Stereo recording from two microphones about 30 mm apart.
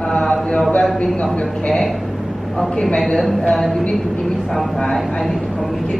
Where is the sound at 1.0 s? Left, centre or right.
Left.